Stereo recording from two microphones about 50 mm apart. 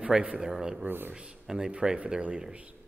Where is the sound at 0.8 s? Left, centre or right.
Right.